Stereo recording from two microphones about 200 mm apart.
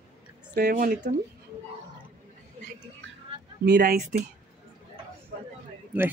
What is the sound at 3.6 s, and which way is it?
Speech, 60° right (ahead or behind).